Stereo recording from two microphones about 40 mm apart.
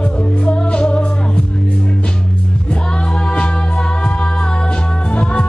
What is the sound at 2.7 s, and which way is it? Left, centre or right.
Music, left.